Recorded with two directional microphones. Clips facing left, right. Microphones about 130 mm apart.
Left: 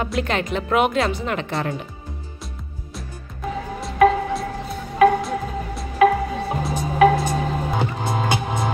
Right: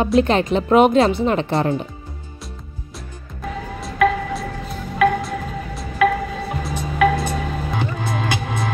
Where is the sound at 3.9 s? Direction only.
30° left (ahead or behind).